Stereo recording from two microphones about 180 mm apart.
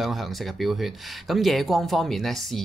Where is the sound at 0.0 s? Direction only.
Centre (ahead or behind).